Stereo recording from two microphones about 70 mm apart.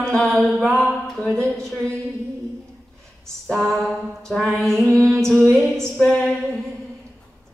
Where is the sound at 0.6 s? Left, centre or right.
Centre.